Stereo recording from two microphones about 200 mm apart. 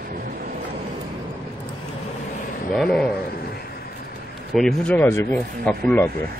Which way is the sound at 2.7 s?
5° left (ahead or behind).